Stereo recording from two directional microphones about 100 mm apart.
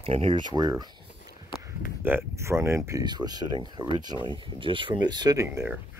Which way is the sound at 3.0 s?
45° right (ahead or behind).